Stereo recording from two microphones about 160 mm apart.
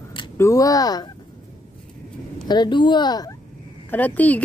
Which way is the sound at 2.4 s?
25° left (ahead or behind).